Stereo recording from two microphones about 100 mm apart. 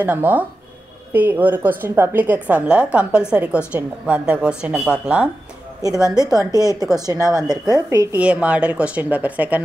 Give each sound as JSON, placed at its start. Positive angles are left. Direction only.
{"t": 0.0, "sound": "a woman's voice", "side_deg": -15}
{"t": 6.1, "sound": "a woman's voice", "side_deg": -40}
{"t": 8.2, "sound": "a woman's voice", "side_deg": -10}